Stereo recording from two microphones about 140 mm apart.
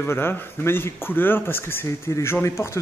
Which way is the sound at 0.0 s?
15° left (ahead or behind).